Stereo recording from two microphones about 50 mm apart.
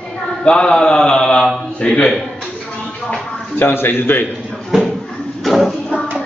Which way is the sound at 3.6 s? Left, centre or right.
Left.